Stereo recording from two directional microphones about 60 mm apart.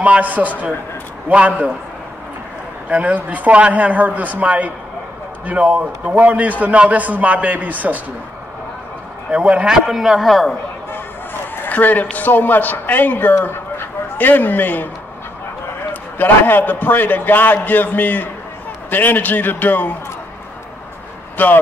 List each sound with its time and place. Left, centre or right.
0.0 s a man's voice: right
2.9 s a man's voice: right
9.3 s a man's voice: centre
9.8 s a man's voice: centre
11.5 s a man's voice: left
15.9 s a man's voice: left
21.4 s a man's voice: left